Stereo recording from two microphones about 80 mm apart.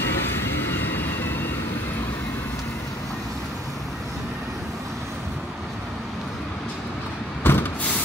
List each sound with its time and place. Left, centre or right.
0.0 s vehicle: left
7.5 s vehicle: left